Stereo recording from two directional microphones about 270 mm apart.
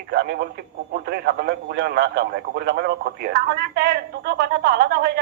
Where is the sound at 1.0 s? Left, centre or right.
Right.